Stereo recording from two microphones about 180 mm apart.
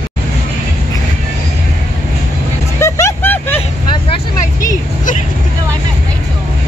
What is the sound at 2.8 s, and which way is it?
Music, 15° left (ahead or behind).